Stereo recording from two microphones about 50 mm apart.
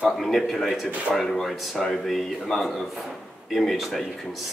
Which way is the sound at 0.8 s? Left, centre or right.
Right.